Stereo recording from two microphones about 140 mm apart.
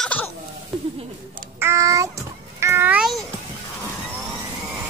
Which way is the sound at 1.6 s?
20° right (ahead or behind).